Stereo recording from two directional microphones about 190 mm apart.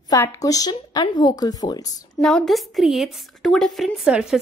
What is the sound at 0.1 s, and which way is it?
Speech, 20° left (ahead or behind).